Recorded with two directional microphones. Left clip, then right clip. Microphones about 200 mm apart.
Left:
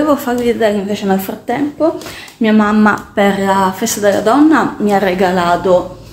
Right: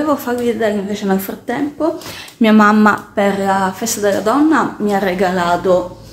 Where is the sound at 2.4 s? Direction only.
20° right (ahead or behind).